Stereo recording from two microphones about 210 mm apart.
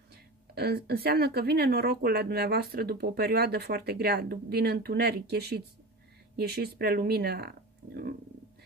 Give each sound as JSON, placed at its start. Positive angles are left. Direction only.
{"t": 0.1, "sound": "speech", "side_deg": -50}